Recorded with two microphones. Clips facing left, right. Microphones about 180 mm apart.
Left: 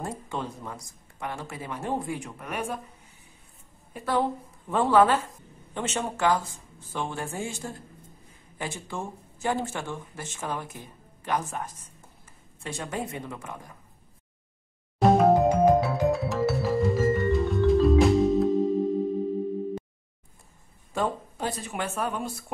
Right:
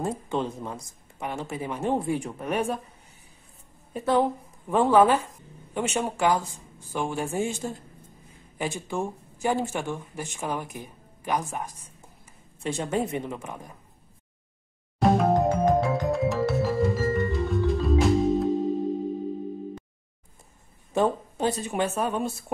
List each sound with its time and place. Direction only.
0.0 s speech: 20° right (ahead or behind)
3.9 s speech: 20° right (ahead or behind)
12.6 s speech: 25° right (ahead or behind)
15.0 s music: centre (ahead or behind)
20.9 s speech: 25° right (ahead or behind)